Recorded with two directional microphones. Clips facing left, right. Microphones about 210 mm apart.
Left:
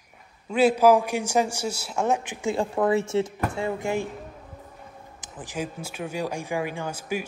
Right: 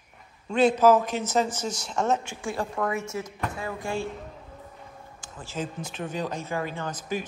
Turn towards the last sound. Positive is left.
turn(degrees=10)  # may be behind; listen again after turning